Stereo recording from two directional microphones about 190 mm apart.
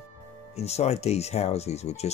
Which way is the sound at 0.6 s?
35° left (ahead or behind).